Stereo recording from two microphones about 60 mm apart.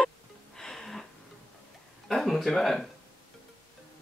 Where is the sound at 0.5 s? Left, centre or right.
Centre.